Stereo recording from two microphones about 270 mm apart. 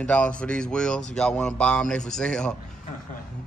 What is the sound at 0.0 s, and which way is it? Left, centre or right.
Speech, centre.